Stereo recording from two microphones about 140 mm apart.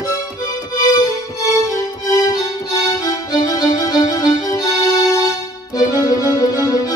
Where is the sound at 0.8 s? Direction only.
25° left (ahead or behind).